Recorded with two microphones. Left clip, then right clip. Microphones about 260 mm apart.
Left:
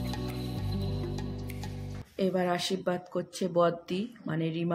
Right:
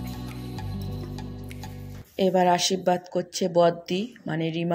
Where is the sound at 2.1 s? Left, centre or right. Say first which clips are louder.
Right 8 dB; centre.